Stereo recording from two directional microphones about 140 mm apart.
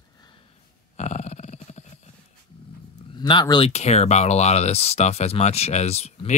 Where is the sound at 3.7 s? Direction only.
50° left (ahead or behind).